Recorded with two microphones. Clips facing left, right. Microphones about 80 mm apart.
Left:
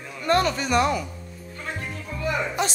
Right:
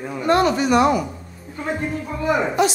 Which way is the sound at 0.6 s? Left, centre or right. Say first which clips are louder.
Right 6 dB; right.